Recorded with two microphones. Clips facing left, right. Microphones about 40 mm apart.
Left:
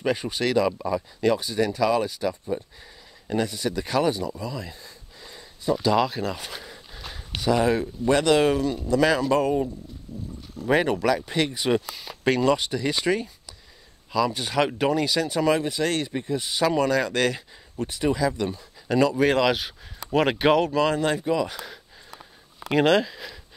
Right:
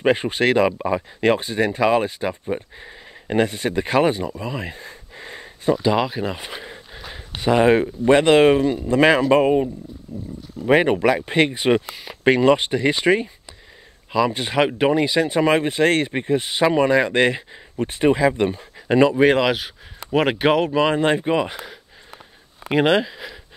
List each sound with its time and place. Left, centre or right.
0.0 s speech: right
4.4 s a sound: right
5.8 s speech: centre
12.0 s speech: right
22.7 s speech: centre